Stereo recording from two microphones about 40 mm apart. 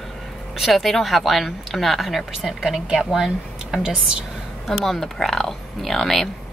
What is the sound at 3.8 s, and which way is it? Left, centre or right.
Speech, right.